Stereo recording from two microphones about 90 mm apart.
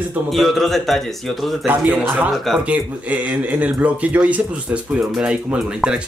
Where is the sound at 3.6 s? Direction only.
15° right (ahead or behind).